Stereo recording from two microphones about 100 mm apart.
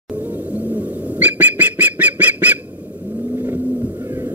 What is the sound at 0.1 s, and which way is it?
Bird, 15° right (ahead or behind).